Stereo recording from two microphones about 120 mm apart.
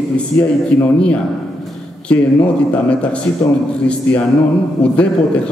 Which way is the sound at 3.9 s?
10° left (ahead or behind).